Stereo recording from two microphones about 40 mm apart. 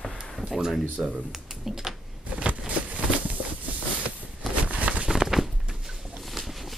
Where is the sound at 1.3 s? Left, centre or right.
Centre.